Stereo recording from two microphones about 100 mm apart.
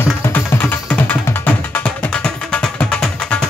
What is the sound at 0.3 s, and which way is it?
Music, 15° left (ahead or behind).